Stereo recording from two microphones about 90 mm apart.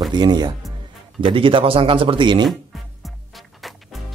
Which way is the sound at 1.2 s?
75° right (ahead or behind).